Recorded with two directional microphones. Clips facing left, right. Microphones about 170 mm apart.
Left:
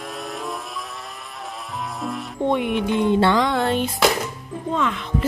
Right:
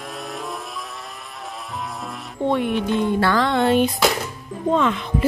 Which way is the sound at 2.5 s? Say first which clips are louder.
Right 1 dB; 15° left (ahead or behind).